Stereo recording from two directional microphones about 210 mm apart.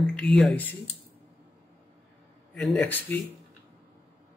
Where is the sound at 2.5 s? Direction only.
5° left (ahead or behind).